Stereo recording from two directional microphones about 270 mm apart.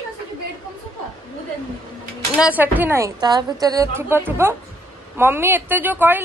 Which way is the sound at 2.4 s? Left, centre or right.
Centre.